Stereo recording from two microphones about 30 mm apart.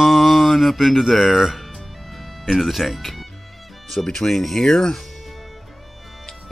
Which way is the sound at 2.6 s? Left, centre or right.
Centre.